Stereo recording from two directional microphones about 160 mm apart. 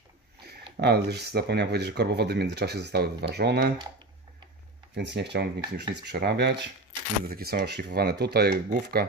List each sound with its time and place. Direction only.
0.7 s speech: 90° right
4.9 s speech: 90° right
7.2 s speech: 70° right (ahead or behind); by 8.5 s 90° right